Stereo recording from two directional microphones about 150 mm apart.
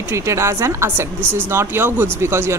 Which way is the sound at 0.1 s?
20° right (ahead or behind).